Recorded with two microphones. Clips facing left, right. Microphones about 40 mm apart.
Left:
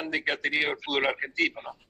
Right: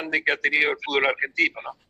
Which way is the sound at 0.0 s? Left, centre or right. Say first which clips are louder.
Right 5 dB; centre.